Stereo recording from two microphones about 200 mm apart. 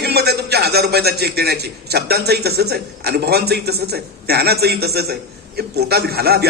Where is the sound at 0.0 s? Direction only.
55° right (ahead or behind).